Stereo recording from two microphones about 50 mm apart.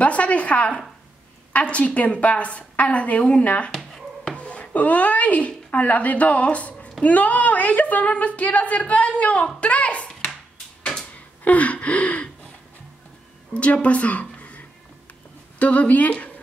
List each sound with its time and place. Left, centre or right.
0.0 s a woman's voice: left
9.6 s a sound: left
11.4 s gasp: left
13.5 s a woman's voice: left
15.6 s speech: left